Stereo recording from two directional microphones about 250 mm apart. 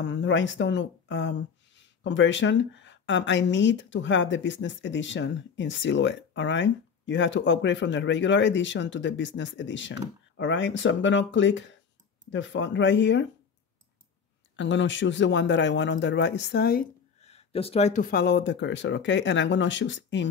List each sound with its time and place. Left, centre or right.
0.0 s speech: left
14.6 s speech: left
17.2 s speech: left